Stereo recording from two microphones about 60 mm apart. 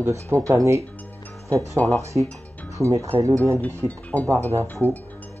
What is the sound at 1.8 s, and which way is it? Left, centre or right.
Speech, left.